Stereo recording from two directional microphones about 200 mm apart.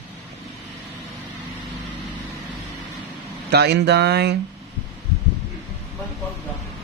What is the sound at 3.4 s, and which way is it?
Speech, 55° right (ahead or behind).